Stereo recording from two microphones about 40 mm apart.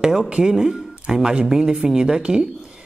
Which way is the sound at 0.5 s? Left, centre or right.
Centre.